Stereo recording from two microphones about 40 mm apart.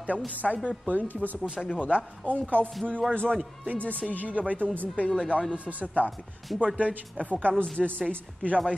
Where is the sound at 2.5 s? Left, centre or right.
Right.